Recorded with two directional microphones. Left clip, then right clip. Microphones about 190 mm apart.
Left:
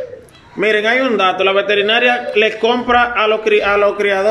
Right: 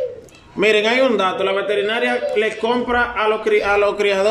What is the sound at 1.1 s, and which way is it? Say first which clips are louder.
A man's voice: left 5 dB; 10° left (ahead or behind).